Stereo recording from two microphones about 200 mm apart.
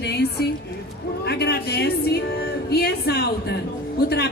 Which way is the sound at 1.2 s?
55° left (ahead or behind).